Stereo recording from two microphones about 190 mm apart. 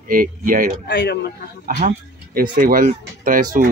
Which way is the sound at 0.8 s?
60° left (ahead or behind).